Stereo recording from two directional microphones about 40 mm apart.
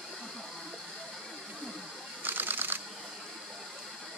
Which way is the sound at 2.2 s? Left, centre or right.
Right.